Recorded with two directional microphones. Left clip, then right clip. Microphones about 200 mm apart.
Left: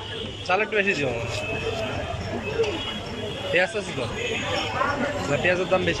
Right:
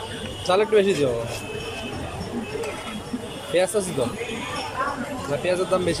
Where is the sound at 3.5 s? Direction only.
15° right (ahead or behind).